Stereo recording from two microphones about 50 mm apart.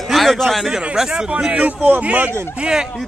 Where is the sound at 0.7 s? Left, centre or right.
Centre.